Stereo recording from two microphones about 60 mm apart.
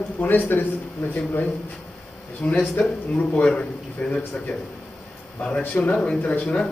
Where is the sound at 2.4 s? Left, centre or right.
Left.